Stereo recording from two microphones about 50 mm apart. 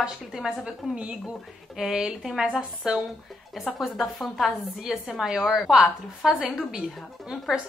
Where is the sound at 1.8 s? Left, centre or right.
Centre.